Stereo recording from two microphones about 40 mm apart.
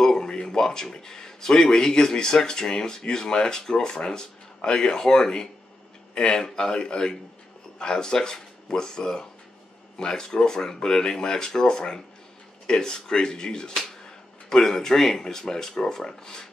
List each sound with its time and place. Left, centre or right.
0.0 s speech: centre